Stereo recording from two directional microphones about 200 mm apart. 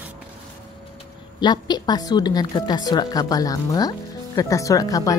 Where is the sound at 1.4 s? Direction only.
20° left (ahead or behind).